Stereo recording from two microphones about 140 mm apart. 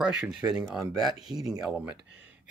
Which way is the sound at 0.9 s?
30° right (ahead or behind).